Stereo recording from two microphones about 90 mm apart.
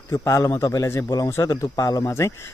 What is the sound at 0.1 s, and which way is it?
Speech, 35° left (ahead or behind).